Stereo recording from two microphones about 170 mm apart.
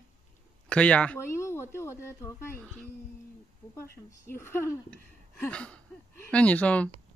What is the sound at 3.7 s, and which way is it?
Speech, 15° left (ahead or behind).